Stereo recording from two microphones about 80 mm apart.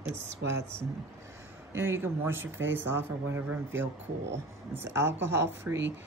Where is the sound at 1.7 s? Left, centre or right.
Right.